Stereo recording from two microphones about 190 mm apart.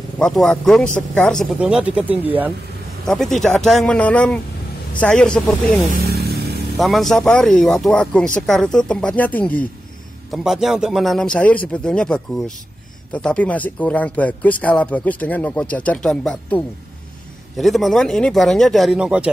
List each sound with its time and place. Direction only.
0.2 s speech: 5° left (ahead or behind)
3.1 s speech: centre (ahead or behind)
6.1 s a sound: 55° right (ahead or behind)
6.8 s speech: centre (ahead or behind)